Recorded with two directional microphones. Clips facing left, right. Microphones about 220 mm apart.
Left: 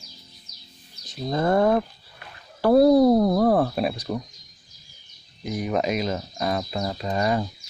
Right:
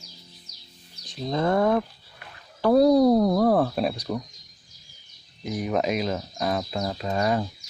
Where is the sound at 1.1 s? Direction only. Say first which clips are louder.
Left 1 dB; 5° left (ahead or behind).